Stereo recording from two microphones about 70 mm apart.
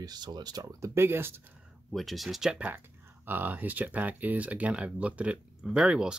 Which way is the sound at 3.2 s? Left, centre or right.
Right.